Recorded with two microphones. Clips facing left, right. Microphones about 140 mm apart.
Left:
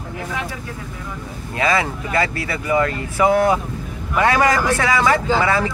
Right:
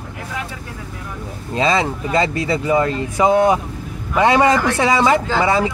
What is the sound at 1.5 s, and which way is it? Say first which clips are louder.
Speech: right 2 dB; 25° right (ahead or behind).